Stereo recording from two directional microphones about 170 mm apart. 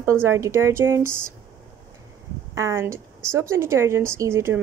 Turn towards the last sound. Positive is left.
turn(degrees=-15)  # may be behind; listen again after turning